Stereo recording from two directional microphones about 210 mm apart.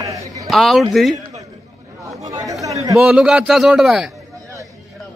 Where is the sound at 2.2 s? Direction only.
15° right (ahead or behind).